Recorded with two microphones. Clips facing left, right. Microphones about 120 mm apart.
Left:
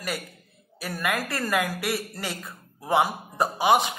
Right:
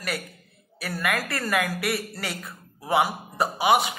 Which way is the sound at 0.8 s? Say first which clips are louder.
Even; 15° left (ahead or behind).